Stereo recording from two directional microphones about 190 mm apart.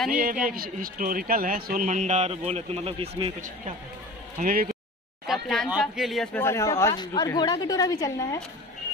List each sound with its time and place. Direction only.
0.1 s a man's voice: 45° right (ahead or behind)
4.4 s a man's voice: 50° right (ahead or behind)
5.2 s speech: centre (ahead or behind); by 8.4 s 15° left (ahead or behind)